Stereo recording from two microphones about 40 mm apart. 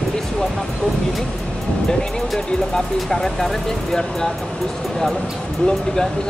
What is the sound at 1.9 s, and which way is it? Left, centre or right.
Speech, centre.